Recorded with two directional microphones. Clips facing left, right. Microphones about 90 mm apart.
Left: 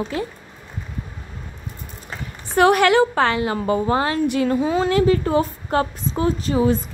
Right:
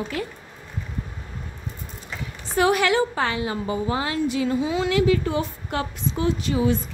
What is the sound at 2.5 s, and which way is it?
A woman's voice, 60° left (ahead or behind).